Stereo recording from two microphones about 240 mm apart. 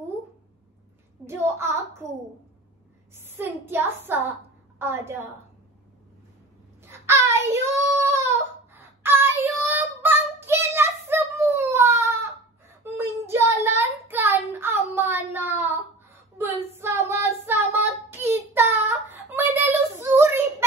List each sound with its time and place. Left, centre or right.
1.2 s a sound: centre
3.2 s speech: centre
6.8 s babbling: centre
8.0 s child singing: centre
16.3 s a sound: centre
16.7 s child singing: centre